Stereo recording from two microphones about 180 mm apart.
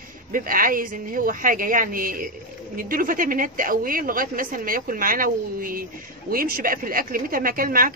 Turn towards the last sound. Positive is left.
turn(degrees=-50)  # may be behind; listen again after turning